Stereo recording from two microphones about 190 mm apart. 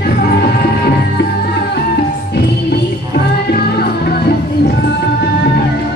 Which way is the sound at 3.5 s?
55° left (ahead or behind).